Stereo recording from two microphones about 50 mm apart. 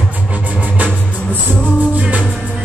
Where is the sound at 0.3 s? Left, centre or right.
Right.